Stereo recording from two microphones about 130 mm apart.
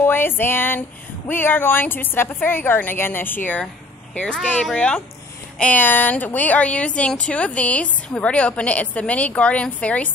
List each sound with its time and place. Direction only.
0.0 s speech: 15° left (ahead or behind)